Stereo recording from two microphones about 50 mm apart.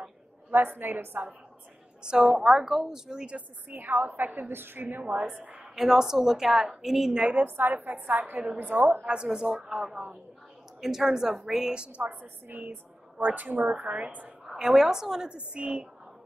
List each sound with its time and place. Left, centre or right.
0.5 s a woman's voice: right
2.0 s a woman's voice: centre
2.4 s a woman's voice: centre
3.7 s a woman's voice: right
5.3 s a woman's voice: right
5.8 s a woman's voice: centre
7.4 s a woman's voice: right
9.0 s a woman's voice: centre
12.0 s a woman's voice: right
14.4 s a woman's voice: centre